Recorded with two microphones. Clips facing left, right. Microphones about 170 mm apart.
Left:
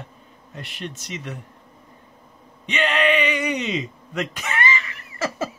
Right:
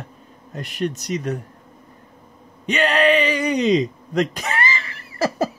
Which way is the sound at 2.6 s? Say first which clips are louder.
Right 4 dB; 40° right (ahead or behind).